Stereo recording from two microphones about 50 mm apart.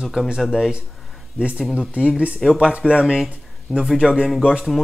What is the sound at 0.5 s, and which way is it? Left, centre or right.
Speech, centre.